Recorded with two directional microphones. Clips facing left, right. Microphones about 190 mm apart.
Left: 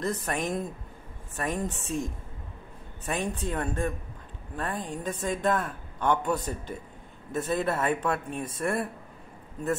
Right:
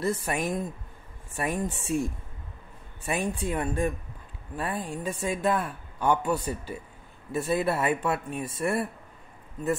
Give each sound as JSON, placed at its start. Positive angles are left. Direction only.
{"t": 0.0, "sound": "a woman's voice", "side_deg": -10}
{"t": 3.1, "sound": "a woman's voice", "side_deg": -10}